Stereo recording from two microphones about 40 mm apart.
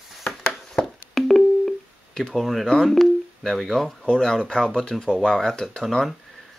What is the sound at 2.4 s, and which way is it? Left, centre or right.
Speech, centre.